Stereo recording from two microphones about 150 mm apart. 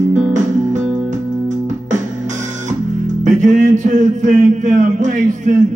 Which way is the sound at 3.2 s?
55° right (ahead or behind).